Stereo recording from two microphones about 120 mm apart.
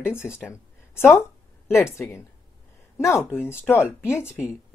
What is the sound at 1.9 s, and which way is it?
Speech, 25° left (ahead or behind).